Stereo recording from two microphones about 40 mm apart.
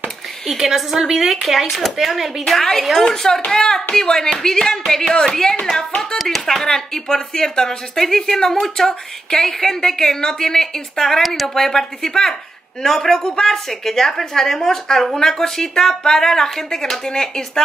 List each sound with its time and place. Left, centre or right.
0.5 s speech: centre